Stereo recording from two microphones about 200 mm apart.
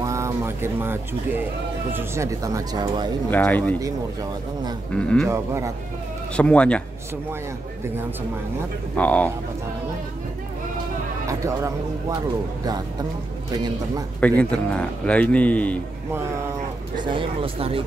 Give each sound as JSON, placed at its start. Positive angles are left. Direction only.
{"t": 0.0, "sound": "a sound", "side_deg": -15}
{"t": 1.9, "sound": "speech", "side_deg": -10}
{"t": 3.3, "sound": "a man's voice", "side_deg": 10}
{"t": 3.8, "sound": "speech", "side_deg": -15}
{"t": 4.9, "sound": "speech", "side_deg": 5}
{"t": 5.3, "sound": "speech", "side_deg": -15}
{"t": 6.3, "sound": "speech", "side_deg": 5}
{"t": 8.9, "sound": "a man's voice", "side_deg": 5}
{"t": 11.2, "sound": "speech", "side_deg": -15}
{"t": 14.4, "sound": "a man's voice", "side_deg": 5}
{"t": 17.0, "sound": "speech", "side_deg": -25}